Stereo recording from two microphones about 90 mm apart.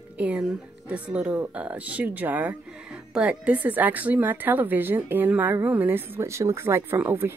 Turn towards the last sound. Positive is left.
turn(degrees=-25)  # may be behind; listen again after turning